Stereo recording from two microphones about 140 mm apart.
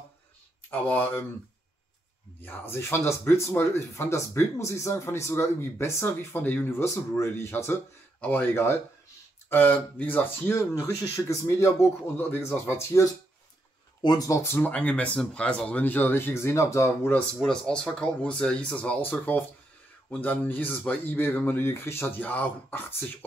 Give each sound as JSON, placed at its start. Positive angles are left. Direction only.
{"t": 0.7, "sound": "speech", "side_deg": 15}
{"t": 2.4, "sound": "speech", "side_deg": 15}
{"t": 17.4, "sound": "speech", "side_deg": 5}